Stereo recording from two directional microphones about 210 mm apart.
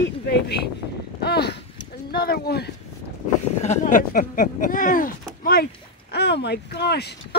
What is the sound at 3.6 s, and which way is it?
Speech, 35° left (ahead or behind).